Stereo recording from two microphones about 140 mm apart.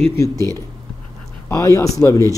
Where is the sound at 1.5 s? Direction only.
25° left (ahead or behind).